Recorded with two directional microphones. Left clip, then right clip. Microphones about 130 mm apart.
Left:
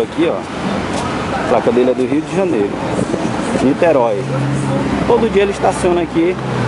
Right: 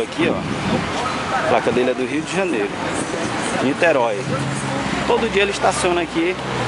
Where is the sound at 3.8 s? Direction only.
15° right (ahead or behind).